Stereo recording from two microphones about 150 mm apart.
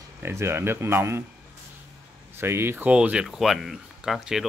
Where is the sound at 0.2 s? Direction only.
15° right (ahead or behind).